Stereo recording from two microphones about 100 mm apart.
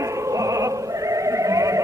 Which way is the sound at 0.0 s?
30° right (ahead or behind).